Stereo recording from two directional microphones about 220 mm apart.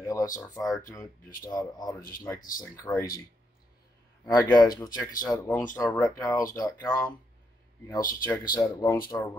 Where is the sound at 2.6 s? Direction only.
15° left (ahead or behind).